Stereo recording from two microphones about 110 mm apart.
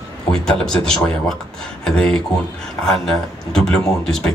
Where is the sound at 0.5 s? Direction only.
5° left (ahead or behind).